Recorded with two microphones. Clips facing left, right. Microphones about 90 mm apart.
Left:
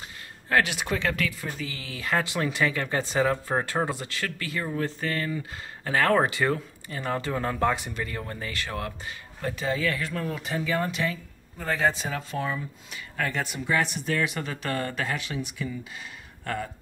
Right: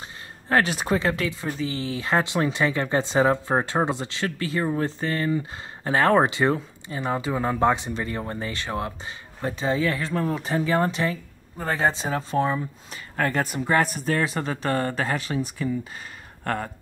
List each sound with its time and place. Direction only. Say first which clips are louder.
0.5 s speech: right 3 dB; 35° right (ahead or behind)
16.4 s speech: right 4 dB; 55° right (ahead or behind)